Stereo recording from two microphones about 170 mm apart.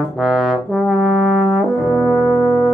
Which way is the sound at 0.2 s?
Centre (ahead or behind).